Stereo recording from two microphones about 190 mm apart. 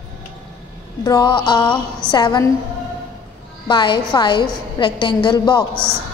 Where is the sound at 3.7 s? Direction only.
25° left (ahead or behind).